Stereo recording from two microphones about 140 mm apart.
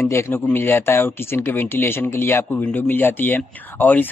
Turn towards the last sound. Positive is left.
turn(degrees=15)  # may be behind; listen again after turning